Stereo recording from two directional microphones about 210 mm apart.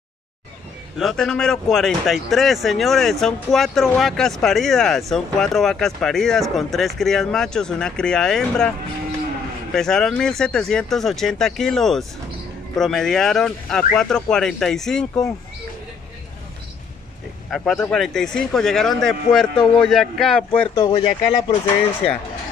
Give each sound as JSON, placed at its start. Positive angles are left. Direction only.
{"t": 0.9, "sound": "speech", "side_deg": 0}
{"t": 17.5, "sound": "speech", "side_deg": 0}
{"t": 20.8, "sound": "speech", "side_deg": 20}